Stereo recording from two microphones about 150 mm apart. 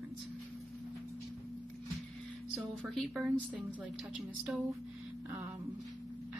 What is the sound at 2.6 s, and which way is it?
A woman's voice, centre (ahead or behind).